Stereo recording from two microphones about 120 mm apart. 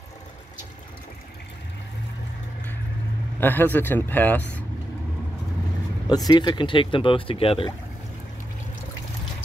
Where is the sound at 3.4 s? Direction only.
15° left (ahead or behind).